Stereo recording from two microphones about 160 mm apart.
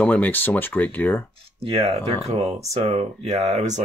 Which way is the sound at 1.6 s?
40° right (ahead or behind).